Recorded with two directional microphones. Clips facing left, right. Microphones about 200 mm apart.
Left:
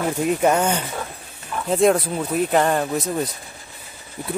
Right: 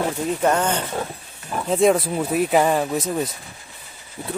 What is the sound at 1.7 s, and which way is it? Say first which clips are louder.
Speech: even; centre (ahead or behind).